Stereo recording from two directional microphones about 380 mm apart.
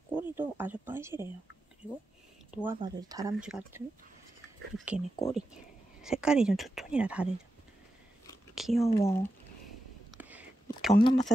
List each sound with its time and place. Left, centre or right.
0.1 s a sound: centre
2.5 s speech: centre
6.0 s speech: centre
8.5 s speech: centre
10.1 s a sound: centre
10.9 s speech: centre